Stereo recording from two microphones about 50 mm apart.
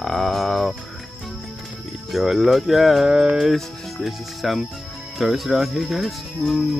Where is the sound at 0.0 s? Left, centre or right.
Centre.